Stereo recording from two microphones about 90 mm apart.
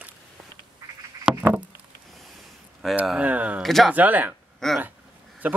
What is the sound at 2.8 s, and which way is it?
Speech, 5° left (ahead or behind).